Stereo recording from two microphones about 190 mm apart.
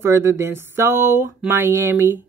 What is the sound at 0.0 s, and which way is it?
A woman's voice, 15° right (ahead or behind).